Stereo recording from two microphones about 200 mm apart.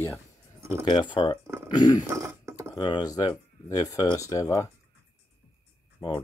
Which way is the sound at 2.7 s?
20° left (ahead or behind).